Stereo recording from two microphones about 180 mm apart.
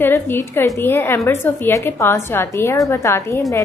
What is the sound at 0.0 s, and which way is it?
A woman's voice, 15° left (ahead or behind).